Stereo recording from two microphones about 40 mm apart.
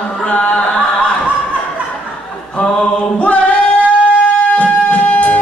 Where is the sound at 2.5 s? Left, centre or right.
Left.